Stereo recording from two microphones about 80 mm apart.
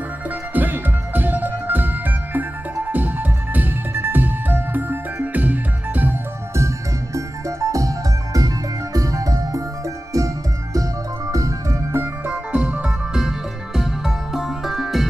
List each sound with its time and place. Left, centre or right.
0.6 s music: right
7.2 s music: right
12.5 s music: centre